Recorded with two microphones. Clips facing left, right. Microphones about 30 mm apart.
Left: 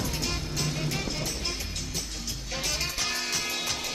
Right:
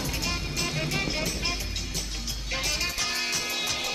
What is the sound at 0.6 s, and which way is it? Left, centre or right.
Music, right.